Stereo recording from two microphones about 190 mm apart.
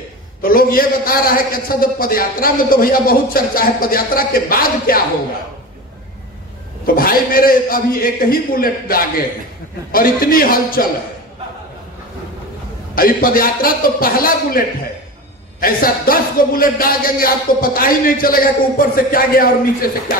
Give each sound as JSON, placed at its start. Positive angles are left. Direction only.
{"t": 0.4, "sound": "a man's voice", "side_deg": 50}
{"t": 7.0, "sound": "a man's voice", "side_deg": 50}
{"t": 12.9, "sound": "a man's voice", "side_deg": 50}
{"t": 15.6, "sound": "a man's voice", "side_deg": 50}